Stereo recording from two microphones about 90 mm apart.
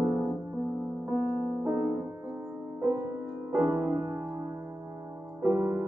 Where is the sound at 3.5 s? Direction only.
20° right (ahead or behind).